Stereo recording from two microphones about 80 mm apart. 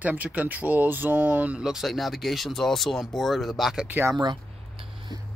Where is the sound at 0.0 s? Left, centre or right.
Centre.